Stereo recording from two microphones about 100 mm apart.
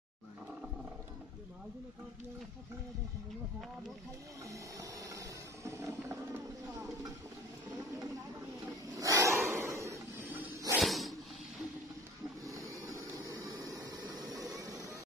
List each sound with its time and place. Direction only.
4.5 s music: 35° right (ahead or behind)
8.9 s a sound: 35° right (ahead or behind)
10.8 s whip: centre (ahead or behind)
12.4 s vehicle: 30° right (ahead or behind)
14.2 s a sound: centre (ahead or behind)
14.5 s music: 30° right (ahead or behind)